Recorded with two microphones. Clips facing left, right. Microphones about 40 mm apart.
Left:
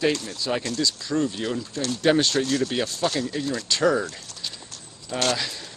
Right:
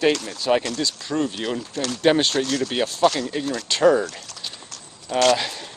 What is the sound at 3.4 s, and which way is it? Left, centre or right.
Speech, right.